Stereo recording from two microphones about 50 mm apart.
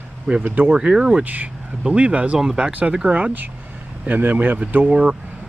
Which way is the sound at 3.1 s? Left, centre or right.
Right.